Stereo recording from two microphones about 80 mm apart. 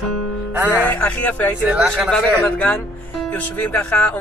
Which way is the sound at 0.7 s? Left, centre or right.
Left.